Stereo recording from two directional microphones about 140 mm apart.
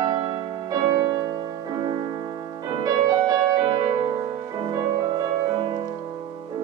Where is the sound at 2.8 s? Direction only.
25° right (ahead or behind).